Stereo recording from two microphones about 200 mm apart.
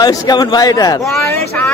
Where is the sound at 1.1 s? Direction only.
10° left (ahead or behind).